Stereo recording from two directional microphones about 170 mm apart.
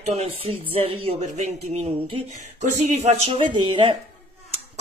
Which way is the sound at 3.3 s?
30° right (ahead or behind).